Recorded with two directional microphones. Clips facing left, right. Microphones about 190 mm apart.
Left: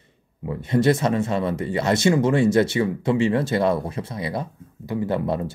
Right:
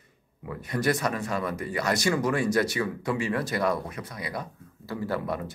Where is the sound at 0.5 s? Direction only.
25° left (ahead or behind).